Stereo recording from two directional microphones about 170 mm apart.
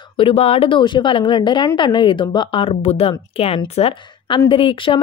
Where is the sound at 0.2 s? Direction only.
35° left (ahead or behind).